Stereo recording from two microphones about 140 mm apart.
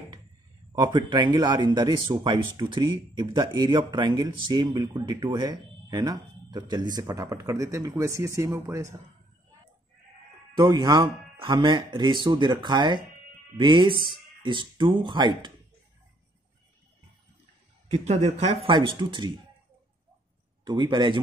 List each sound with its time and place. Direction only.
0.7 s speech: 30° right (ahead or behind)
10.5 s speech: 30° right (ahead or behind)
17.9 s speech: 50° right (ahead or behind); by 19.3 s 35° right (ahead or behind)
20.6 s speech: 35° right (ahead or behind)